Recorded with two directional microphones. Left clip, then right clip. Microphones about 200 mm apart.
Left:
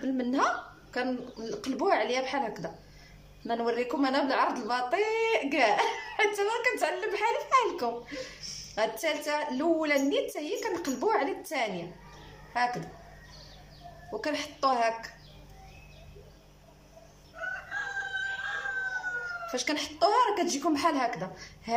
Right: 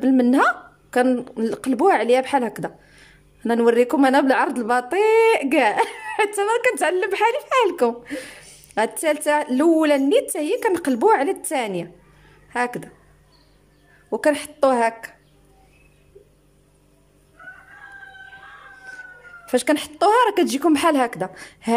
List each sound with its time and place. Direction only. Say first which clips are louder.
0.0 s speech: right 11 dB; 60° right (ahead or behind)
14.2 s speech: right 11 dB; 65° right (ahead or behind)
19.4 s speech: right 15 dB; 65° right (ahead or behind)